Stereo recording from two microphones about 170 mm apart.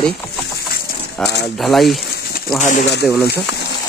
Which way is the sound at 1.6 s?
Centre (ahead or behind).